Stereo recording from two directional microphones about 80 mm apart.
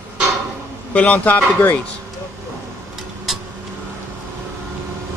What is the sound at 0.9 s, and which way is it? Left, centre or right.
Speech, centre.